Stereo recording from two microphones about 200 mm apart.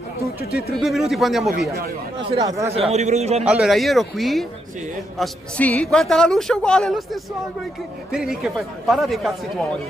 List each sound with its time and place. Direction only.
0.5 s speech: 50° left (ahead or behind)
0.7 s a woman's voice: centre (ahead or behind)
2.3 s speech: 15° right (ahead or behind)
2.7 s a man's voice: 30° right (ahead or behind)
3.4 s a woman's voice: 5° right (ahead or behind)
8.1 s a woman's voice: centre (ahead or behind)